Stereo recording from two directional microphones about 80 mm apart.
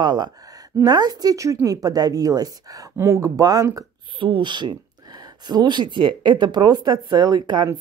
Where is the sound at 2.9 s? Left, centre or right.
Right.